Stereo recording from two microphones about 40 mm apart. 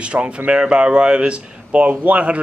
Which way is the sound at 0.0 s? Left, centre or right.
Right.